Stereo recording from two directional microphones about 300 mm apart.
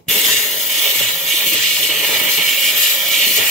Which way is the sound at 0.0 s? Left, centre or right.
Centre.